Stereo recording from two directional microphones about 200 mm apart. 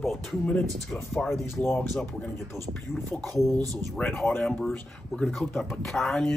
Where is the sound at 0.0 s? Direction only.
Centre (ahead or behind).